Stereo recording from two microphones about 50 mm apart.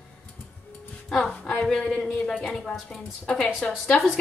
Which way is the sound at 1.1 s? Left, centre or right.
Centre.